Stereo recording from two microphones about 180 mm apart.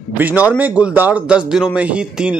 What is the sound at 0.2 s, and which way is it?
A man's voice, 10° right (ahead or behind).